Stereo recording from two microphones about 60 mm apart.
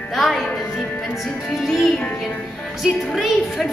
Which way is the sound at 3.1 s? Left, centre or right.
Centre.